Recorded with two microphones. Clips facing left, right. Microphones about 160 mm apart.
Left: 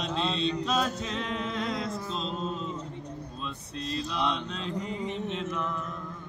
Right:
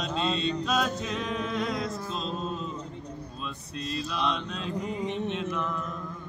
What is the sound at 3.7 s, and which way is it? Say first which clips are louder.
Mantra: even; 20° left (ahead or behind).